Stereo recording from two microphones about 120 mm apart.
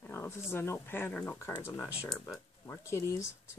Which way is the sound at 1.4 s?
25° left (ahead or behind).